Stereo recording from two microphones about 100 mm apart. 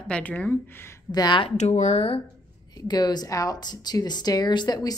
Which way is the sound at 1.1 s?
45° left (ahead or behind).